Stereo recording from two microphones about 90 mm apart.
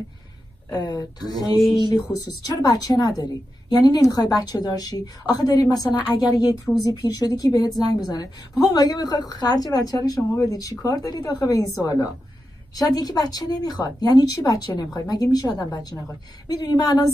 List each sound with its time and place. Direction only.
0.7 s a woman's voice: 45° left (ahead or behind)
2.1 s a woman's voice: 45° left (ahead or behind)